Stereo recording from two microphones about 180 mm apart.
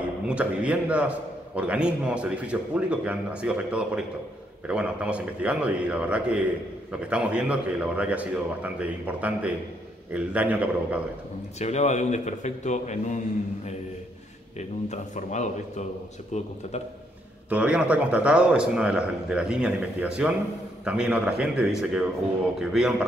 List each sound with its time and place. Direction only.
0.3 s a man's voice: 5° right (ahead or behind)
11.6 s a man's voice: 40° left (ahead or behind)
14.9 s a man's voice: 40° left (ahead or behind)
17.5 s a man's voice: 5° right (ahead or behind)